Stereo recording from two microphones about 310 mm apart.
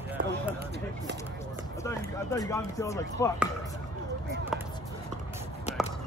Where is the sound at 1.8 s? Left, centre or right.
Centre.